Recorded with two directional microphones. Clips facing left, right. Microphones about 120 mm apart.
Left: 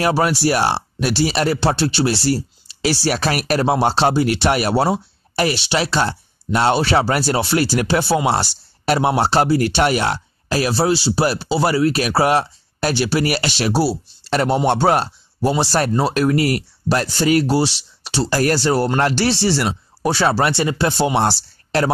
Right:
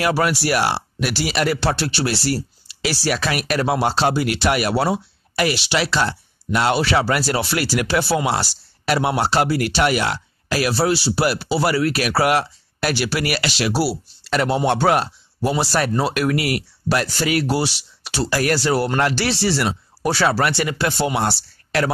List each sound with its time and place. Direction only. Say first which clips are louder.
0.0 s speech: left 2 dB; 30° left (ahead or behind)